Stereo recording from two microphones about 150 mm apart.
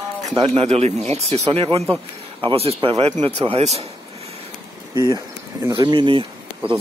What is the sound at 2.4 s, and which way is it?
Speech, 40° right (ahead or behind).